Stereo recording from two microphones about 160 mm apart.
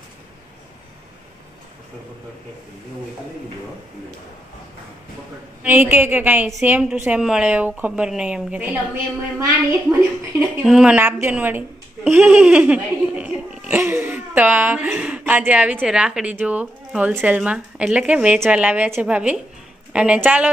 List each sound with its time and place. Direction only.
5.6 s a woman's voice: 10° right (ahead or behind)
10.6 s a woman's voice: 5° right (ahead or behind)